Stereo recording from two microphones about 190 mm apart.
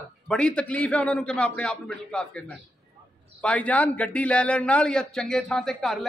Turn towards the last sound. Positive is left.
turn(degrees=5)  # may be behind; listen again after turning